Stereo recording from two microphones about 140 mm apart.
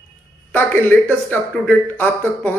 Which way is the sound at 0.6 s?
15° left (ahead or behind).